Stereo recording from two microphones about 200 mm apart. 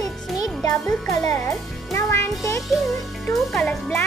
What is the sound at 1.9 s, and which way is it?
Speech, 15° left (ahead or behind).